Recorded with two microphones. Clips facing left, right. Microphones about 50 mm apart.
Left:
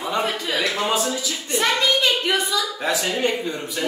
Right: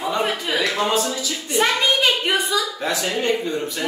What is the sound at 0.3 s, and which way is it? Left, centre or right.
Speech, right.